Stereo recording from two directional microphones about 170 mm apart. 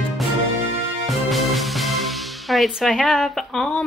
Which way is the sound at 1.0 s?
Centre (ahead or behind).